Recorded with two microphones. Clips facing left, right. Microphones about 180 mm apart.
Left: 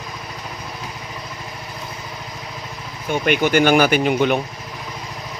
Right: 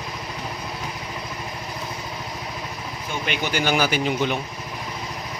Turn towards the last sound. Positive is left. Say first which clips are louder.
# left 6 dB
turn(degrees=55)  # may be behind; listen again after turning